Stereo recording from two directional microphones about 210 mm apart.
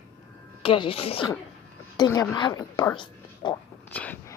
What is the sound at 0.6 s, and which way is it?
Speech, 25° left (ahead or behind).